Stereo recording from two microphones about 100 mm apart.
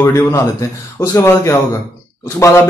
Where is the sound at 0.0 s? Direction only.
30° left (ahead or behind).